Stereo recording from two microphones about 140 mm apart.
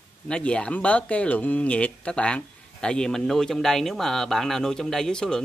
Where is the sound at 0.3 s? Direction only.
5° left (ahead or behind).